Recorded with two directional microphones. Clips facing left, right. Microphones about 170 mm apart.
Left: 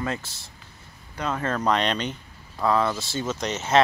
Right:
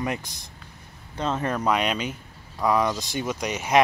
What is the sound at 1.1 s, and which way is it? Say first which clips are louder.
Speech: right 2 dB; 25° right (ahead or behind).